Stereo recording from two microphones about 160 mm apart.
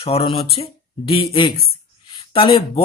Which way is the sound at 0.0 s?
35° left (ahead or behind).